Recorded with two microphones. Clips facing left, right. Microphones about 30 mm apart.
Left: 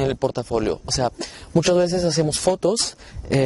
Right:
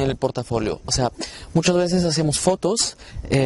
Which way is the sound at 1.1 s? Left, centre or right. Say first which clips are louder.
Left 2 dB; right.